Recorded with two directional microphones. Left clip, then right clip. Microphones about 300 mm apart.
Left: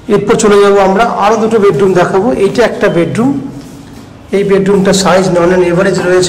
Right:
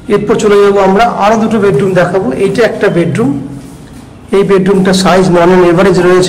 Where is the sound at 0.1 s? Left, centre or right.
Centre.